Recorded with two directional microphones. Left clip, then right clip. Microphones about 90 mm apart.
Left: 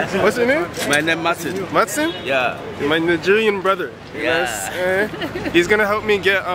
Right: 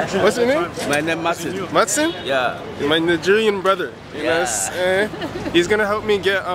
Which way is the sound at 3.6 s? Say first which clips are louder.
Even; 25° right (ahead or behind).